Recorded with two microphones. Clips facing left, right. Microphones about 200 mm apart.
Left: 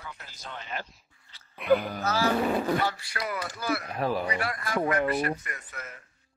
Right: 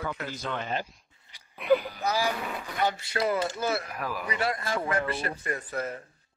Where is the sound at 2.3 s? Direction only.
40° left (ahead or behind).